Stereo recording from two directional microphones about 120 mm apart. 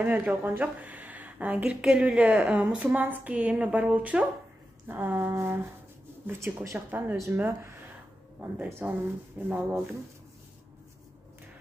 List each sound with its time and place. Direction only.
0.0 s speech: 15° right (ahead or behind)